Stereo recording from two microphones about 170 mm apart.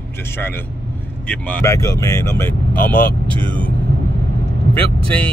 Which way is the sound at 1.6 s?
15° left (ahead or behind).